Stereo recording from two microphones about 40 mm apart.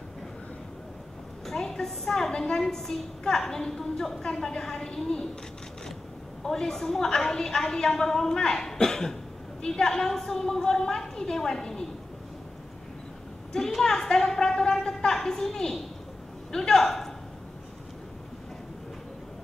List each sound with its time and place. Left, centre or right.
1.4 s a woman's voice: centre
6.4 s a woman's voice: centre
13.5 s a woman's voice: centre